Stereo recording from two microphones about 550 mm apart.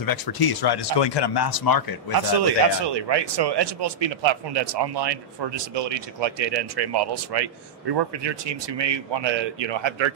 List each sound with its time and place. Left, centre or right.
0.0 s speech: left
2.1 s speech: right